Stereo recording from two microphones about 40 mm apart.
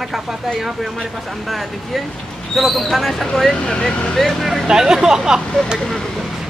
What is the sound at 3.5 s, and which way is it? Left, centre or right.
Speech, left.